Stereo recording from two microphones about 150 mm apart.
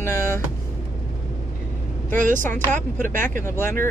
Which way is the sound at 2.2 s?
60° right (ahead or behind).